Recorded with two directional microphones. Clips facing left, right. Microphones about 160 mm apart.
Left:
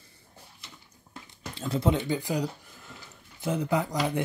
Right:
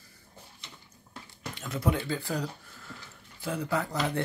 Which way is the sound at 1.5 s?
30° left (ahead or behind).